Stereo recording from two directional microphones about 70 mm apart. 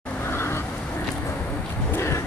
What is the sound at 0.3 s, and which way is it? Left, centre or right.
Vehicle, left.